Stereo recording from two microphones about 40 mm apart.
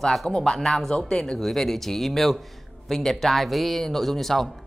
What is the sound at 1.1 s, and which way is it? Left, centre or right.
Speech, centre.